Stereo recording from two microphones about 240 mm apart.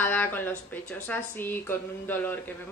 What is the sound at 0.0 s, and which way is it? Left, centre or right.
Speech, centre.